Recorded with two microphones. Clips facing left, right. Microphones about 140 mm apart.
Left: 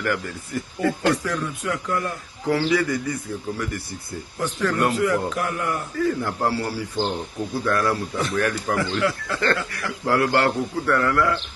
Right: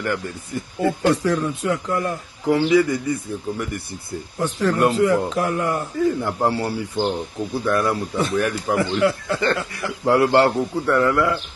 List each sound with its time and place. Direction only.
0.7 s speech: 25° right (ahead or behind)